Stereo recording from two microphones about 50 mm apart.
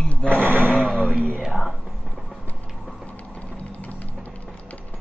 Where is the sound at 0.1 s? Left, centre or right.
Left.